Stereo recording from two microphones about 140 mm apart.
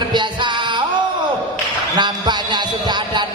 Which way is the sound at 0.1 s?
35° right (ahead or behind).